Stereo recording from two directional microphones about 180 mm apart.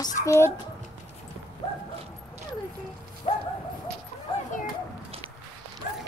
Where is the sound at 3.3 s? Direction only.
30° left (ahead or behind).